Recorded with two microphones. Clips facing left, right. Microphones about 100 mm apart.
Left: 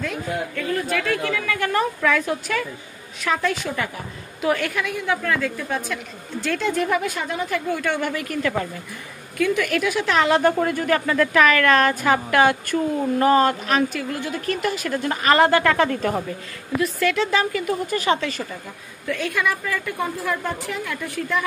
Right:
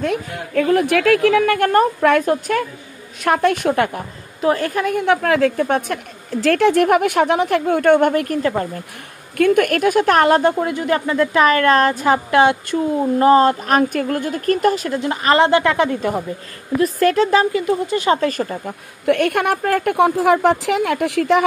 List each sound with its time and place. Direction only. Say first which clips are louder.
0.6 s a woman's voice: right 13 dB; 90° right; by 4.0 s 60° right (ahead or behind)
4.4 s speech: right 5 dB; 35° right (ahead or behind)
5.0 s speech: right 8 dB; 75° right (ahead or behind)
6.4 s a woman's voice: right 9 dB; 70° right (ahead or behind); by 8.4 s 50° right (ahead or behind)
8.4 s speech: right 4 dB; 35° right (ahead or behind)
9.4 s a woman's voice: right 7 dB; 55° right (ahead or behind)
10.5 s speech: right 1 dB; 15° right (ahead or behind)
10.9 s speech: right 2 dB; 30° right (ahead or behind)
13.7 s a woman's voice: right 5 dB; 50° right (ahead or behind)
14.9 s speech: right 2 dB; 25° right (ahead or behind)
16.8 s speech: right 7 dB; 40° right (ahead or behind)
18.1 s a woman's voice: right 6 dB; 45° right (ahead or behind)
19.0 s speech: right 8 dB; 65° right (ahead or behind); by 21.5 s 80° right